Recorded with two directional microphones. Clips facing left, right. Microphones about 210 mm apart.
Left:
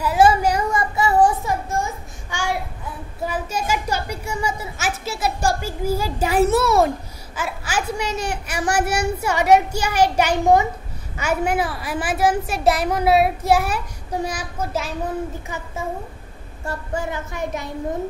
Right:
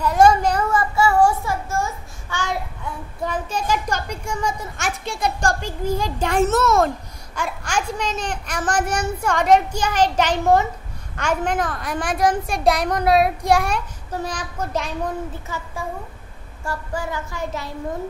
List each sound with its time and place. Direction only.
0.0 s a child's voice: 5° left (ahead or behind)
15.4 s a child's voice: 20° left (ahead or behind)
16.6 s child singing: 20° left (ahead or behind)